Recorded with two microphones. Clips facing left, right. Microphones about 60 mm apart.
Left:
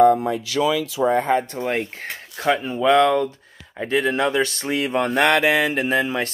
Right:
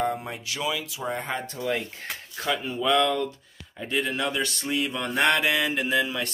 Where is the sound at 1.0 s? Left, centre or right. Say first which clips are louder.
Left 13 dB; left.